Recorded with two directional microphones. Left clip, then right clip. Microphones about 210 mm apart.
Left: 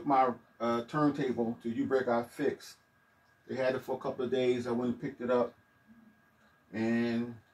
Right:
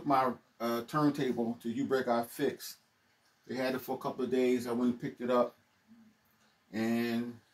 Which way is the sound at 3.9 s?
15° right (ahead or behind).